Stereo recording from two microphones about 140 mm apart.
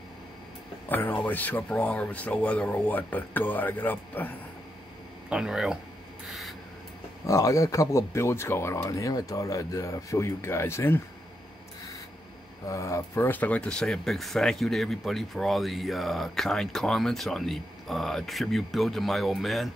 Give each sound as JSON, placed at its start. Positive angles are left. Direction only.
{"t": 0.8, "sound": "speech", "side_deg": 15}
{"t": 5.3, "sound": "speech", "side_deg": -5}
{"t": 6.2, "sound": "rub", "side_deg": 0}
{"t": 7.2, "sound": "speech", "side_deg": 25}
{"t": 12.6, "sound": "speech", "side_deg": 20}